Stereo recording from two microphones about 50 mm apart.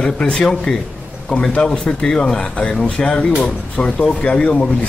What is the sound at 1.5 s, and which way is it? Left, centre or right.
Speech, left.